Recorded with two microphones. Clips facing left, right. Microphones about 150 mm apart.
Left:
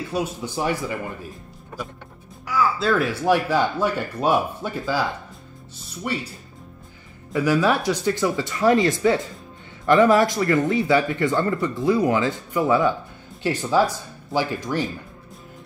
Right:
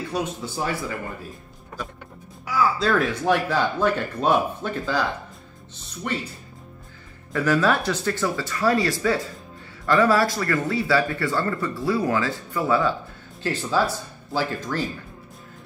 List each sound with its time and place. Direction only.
0.1 s speech: 10° left (ahead or behind)
2.4 s music: 5° right (ahead or behind)
2.8 s speech: 5° left (ahead or behind)
6.0 s speech: 10° left (ahead or behind)
7.3 s speech: 10° left (ahead or behind)